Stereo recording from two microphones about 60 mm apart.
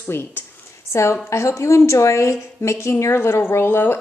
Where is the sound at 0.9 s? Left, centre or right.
Left.